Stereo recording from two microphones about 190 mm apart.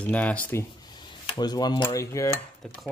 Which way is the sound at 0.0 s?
5° left (ahead or behind).